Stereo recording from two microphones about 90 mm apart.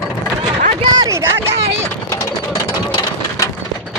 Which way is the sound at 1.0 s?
35° right (ahead or behind).